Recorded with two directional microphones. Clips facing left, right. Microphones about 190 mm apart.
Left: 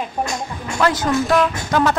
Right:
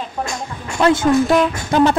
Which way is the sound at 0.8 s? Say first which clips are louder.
Right 4 dB; 25° right (ahead or behind).